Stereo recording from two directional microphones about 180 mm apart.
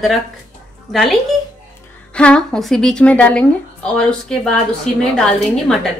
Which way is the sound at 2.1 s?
5° left (ahead or behind).